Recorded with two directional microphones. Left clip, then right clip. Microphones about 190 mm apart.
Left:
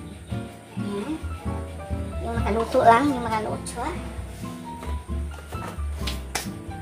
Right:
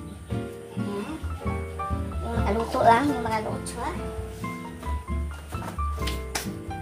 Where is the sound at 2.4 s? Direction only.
15° left (ahead or behind).